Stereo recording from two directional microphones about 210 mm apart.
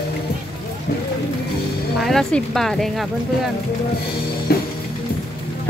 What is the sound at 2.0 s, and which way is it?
Speech, centre (ahead or behind).